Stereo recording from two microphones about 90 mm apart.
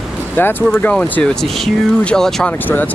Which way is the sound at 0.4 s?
20° left (ahead or behind).